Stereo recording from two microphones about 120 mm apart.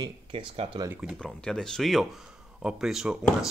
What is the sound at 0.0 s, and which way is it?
Speech, 50° right (ahead or behind).